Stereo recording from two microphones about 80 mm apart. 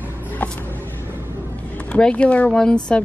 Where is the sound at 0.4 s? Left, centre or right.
Left.